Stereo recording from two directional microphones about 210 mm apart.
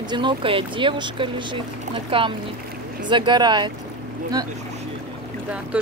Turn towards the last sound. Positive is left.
turn(degrees=-5)  # may be behind; listen again after turning